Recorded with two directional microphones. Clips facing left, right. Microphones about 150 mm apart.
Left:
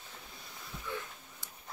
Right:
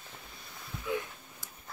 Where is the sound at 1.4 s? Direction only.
Centre (ahead or behind).